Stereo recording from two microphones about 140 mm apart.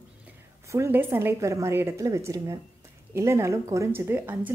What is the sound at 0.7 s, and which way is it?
A woman's voice, 20° right (ahead or behind).